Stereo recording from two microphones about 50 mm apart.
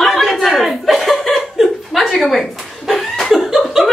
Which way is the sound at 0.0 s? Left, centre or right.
Centre.